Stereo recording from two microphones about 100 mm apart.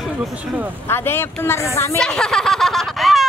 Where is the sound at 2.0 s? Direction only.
5° left (ahead or behind).